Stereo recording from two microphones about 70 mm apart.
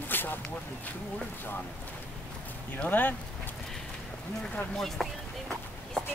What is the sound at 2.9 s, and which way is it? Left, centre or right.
Speech, left.